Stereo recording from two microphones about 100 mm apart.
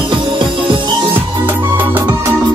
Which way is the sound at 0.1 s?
50° right (ahead or behind).